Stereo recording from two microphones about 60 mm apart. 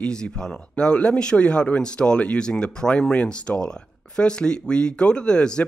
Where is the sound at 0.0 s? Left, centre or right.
Centre.